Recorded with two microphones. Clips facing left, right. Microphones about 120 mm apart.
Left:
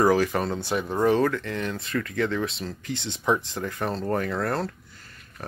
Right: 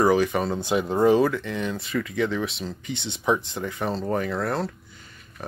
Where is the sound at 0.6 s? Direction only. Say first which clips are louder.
Right 3 dB; 15° right (ahead or behind).